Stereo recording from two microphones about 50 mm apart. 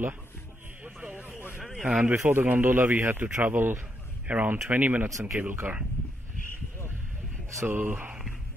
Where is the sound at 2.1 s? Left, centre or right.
Right.